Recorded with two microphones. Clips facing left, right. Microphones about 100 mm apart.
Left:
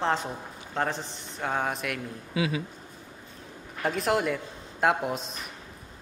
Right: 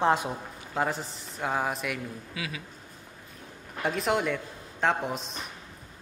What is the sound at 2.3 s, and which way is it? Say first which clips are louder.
Speech: left 11 dB; 25° left (ahead or behind).